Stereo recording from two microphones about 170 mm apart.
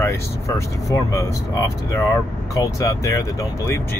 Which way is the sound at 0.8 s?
20° left (ahead or behind).